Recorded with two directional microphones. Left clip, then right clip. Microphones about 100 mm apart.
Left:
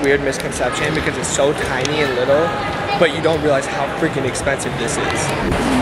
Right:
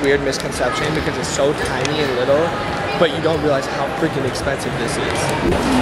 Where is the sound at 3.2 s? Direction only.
10° left (ahead or behind).